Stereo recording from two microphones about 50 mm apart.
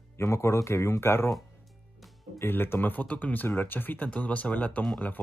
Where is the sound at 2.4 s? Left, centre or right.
Left.